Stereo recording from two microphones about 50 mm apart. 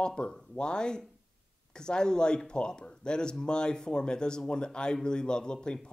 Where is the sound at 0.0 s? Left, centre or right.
Centre.